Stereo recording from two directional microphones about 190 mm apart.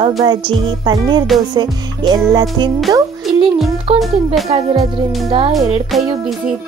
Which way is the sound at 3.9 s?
35° right (ahead or behind).